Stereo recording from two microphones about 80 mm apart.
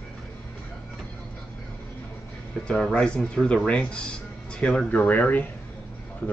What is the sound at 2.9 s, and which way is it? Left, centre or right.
Speech, centre.